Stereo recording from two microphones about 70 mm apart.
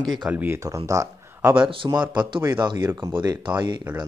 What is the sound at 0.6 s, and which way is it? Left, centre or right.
Speech, right.